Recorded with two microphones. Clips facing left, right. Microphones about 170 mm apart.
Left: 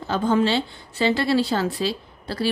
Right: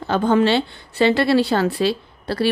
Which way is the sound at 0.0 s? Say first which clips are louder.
Right 4 dB; 65° right (ahead or behind).